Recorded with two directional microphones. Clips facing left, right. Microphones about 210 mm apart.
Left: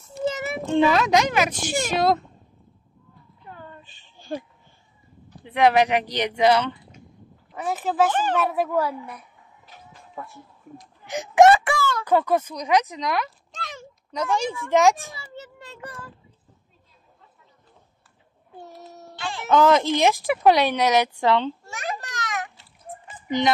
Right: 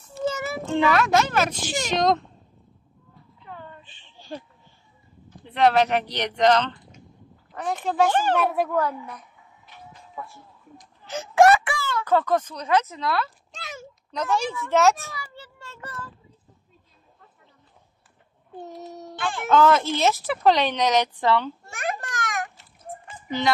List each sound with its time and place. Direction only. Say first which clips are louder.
0.0 s a sound: left 1 dB; 20° left (ahead or behind)
1.9 s speech: even; 5° left (ahead or behind)
3.8 s a sound: left 1 dB; 40° left (ahead or behind)
5.4 s a child's voice: left 1 dB; 10° left (ahead or behind)
11.1 s speech: left 2 dB; 15° left (ahead or behind)
11.5 s a sound: left 2 dB; 40° left (ahead or behind)
12.0 s speech: right 1 dB; 15° left (ahead or behind)
13.5 s a sound: left 1 dB; 5° right (ahead or behind)
14.1 s speech: left 1 dB; 10° left (ahead or behind)
19.1 s speech: right 3 dB; 55° right (ahead or behind)
19.5 s speech: left 1 dB; 15° left (ahead or behind)
21.6 s children playing: right 2 dB; 55° right (ahead or behind)